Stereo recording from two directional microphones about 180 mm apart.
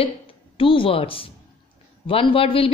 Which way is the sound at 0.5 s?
30° left (ahead or behind).